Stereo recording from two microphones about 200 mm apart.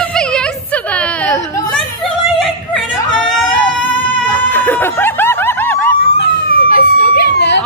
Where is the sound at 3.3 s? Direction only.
5° left (ahead or behind).